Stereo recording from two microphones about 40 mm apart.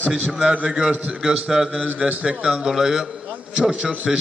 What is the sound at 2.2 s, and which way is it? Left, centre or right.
Speech, right.